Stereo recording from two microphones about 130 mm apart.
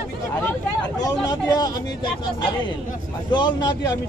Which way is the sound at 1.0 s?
30° left (ahead or behind).